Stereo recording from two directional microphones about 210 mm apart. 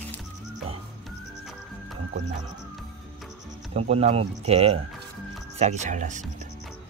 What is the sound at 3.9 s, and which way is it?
Speech, 30° right (ahead or behind).